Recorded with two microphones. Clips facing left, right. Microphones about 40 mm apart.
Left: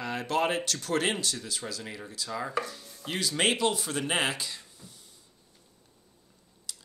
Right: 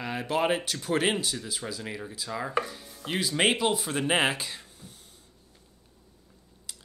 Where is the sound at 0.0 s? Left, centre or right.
Centre.